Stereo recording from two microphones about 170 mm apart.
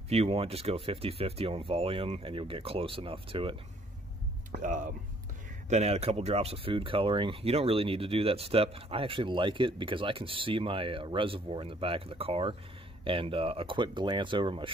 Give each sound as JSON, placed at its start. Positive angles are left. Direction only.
{"t": 0.1, "sound": "speech", "side_deg": -35}
{"t": 4.5, "sound": "speech", "side_deg": -50}
{"t": 5.7, "sound": "speech", "side_deg": -40}